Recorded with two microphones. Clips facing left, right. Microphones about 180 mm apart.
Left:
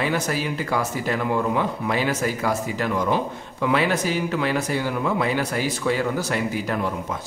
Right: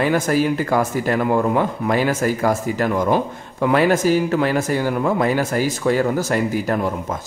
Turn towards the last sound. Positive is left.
turn(degrees=-45)  # may be behind; listen again after turning